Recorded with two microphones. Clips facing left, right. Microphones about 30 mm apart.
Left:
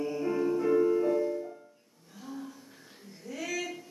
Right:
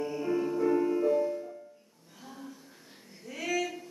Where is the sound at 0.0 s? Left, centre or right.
Centre.